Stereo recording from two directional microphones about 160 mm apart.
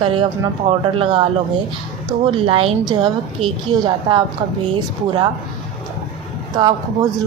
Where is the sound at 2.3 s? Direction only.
35° right (ahead or behind).